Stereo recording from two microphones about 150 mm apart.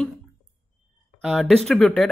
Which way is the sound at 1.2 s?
Centre (ahead or behind).